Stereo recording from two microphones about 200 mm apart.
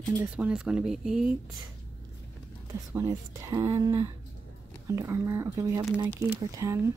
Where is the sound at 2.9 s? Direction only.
15° right (ahead or behind).